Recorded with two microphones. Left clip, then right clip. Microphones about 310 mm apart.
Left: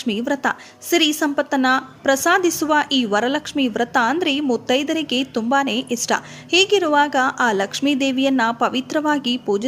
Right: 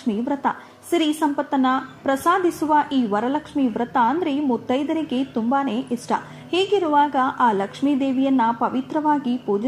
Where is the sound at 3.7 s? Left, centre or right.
Left.